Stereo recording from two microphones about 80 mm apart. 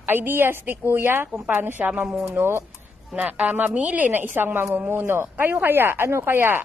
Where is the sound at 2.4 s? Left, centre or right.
Right.